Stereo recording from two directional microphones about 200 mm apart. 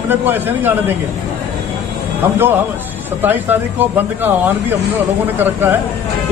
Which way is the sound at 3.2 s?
10° right (ahead or behind).